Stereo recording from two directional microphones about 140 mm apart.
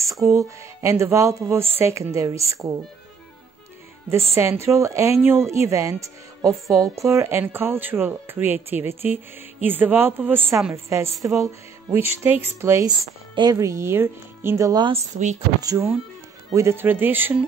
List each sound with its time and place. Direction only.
0.2 s speech: 25° right (ahead or behind)
4.4 s speech: 20° right (ahead or behind)